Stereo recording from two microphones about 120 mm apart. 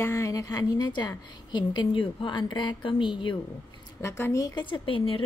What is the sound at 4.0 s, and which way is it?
Speech, 20° left (ahead or behind).